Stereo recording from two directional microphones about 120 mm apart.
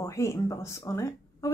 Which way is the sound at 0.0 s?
25° left (ahead or behind).